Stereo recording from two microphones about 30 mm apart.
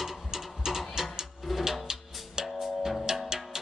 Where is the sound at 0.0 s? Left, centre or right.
Centre.